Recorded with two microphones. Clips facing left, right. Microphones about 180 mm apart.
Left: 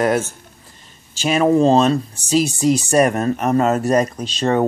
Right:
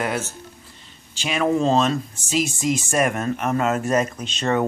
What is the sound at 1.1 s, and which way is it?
Speech, 40° left (ahead or behind).